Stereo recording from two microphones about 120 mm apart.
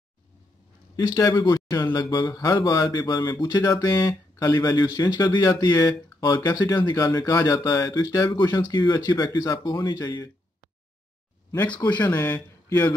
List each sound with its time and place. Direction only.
0.9 s speech: 30° left (ahead or behind)
11.9 s speech: 35° left (ahead or behind)
12.2 s speech: 25° left (ahead or behind)